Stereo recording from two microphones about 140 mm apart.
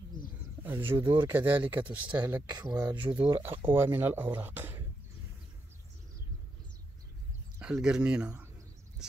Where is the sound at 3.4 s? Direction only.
15° right (ahead or behind).